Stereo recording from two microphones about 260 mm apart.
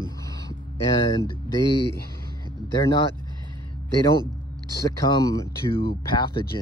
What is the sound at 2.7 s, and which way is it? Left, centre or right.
Speech, centre.